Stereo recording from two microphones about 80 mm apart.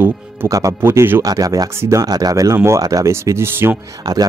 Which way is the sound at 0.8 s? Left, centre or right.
Right.